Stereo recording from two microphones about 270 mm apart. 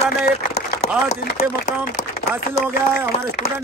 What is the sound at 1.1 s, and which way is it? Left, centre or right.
Speech, left.